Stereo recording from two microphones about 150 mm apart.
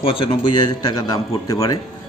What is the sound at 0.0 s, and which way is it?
A man's voice, 40° left (ahead or behind).